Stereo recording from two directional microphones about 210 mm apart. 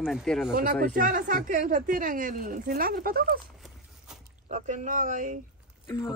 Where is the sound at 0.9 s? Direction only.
40° right (ahead or behind).